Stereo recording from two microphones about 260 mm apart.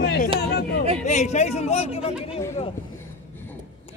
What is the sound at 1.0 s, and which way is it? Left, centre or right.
Speech, left.